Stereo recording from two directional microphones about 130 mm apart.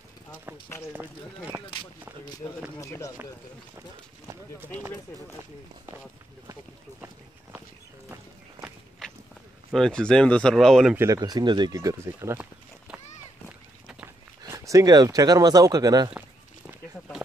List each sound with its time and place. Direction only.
0.5 s speech: 15° right (ahead or behind)
2.8 s speech: 25° left (ahead or behind)
9.0 s a sound: 5° left (ahead or behind)
9.7 s speech: 5° left (ahead or behind)
11.0 s speech: 30° right (ahead or behind)
14.4 s speech: 25° right (ahead or behind)
16.1 s a sound: 10° right (ahead or behind)